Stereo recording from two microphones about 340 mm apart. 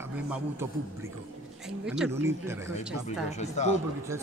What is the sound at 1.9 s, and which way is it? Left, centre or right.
Speech, centre.